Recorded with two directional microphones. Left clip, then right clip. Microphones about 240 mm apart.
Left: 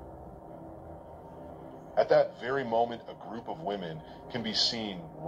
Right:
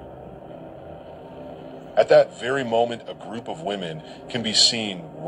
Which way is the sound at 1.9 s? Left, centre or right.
Right.